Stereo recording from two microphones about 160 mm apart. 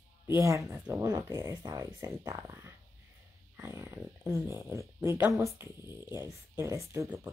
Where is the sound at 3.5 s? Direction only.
15° right (ahead or behind).